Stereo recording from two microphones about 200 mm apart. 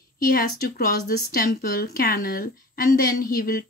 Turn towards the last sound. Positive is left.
turn(degrees=45)  # may be behind; listen again after turning